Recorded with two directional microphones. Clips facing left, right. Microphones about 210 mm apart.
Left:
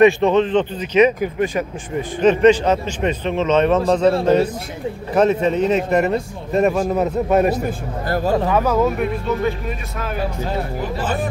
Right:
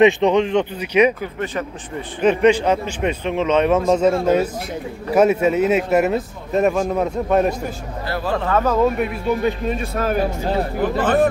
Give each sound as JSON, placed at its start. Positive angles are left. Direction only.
{"t": 0.0, "sound": "speech", "side_deg": -15}
{"t": 1.2, "sound": "speech", "side_deg": 10}
{"t": 2.2, "sound": "speech", "side_deg": -10}
{"t": 5.1, "sound": "a man's voice", "side_deg": -10}
{"t": 8.1, "sound": "speech", "side_deg": 40}
{"t": 8.5, "sound": "a man's voice", "side_deg": 10}
{"t": 9.9, "sound": "speech", "side_deg": -45}
{"t": 10.8, "sound": "speech", "side_deg": -60}